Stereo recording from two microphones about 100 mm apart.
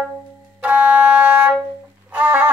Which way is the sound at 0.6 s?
15° right (ahead or behind).